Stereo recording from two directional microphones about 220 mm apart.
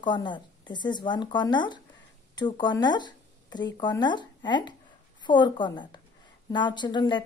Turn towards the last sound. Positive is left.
turn(degrees=20)  # may be behind; listen again after turning